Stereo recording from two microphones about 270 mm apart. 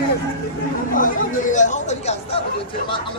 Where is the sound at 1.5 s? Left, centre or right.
Left.